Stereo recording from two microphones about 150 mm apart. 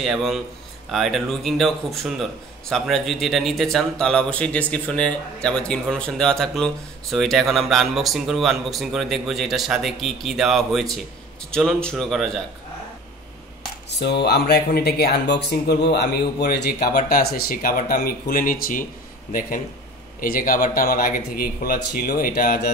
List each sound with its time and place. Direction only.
0.0 s speech: centre (ahead or behind)
14.0 s speech: 90° left; by 18.9 s 65° left (ahead or behind)
20.2 s speech: 70° left (ahead or behind)